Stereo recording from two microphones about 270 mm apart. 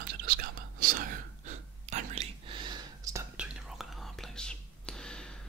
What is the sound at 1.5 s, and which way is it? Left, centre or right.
Whispering, right.